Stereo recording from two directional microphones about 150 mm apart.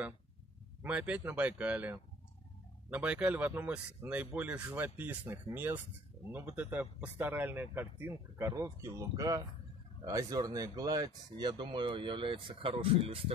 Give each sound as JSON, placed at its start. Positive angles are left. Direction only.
{"t": 0.8, "sound": "speech", "side_deg": -10}